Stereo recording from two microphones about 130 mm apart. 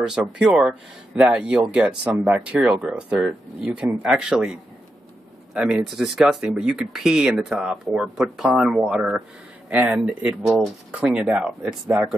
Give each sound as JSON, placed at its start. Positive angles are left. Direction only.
{"t": 0.0, "sound": "speech", "side_deg": -5}